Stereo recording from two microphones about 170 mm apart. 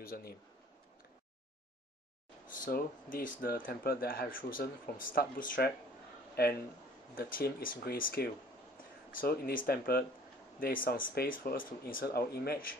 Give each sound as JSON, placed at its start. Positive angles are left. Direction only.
{"t": 0.0, "sound": "speech", "side_deg": 60}
{"t": 2.6, "sound": "speech", "side_deg": 55}
{"t": 7.2, "sound": "speech", "side_deg": 55}